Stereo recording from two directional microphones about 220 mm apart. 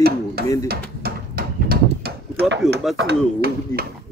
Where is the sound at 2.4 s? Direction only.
50° right (ahead or behind).